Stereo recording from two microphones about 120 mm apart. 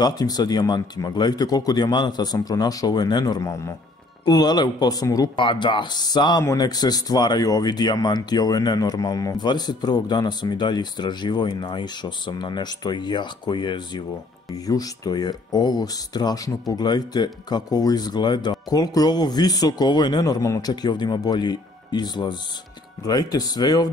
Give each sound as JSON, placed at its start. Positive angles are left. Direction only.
{"t": 0.0, "sound": "speech", "side_deg": 35}
{"t": 4.2, "sound": "speech", "side_deg": 35}
{"t": 5.3, "sound": "speech", "side_deg": 45}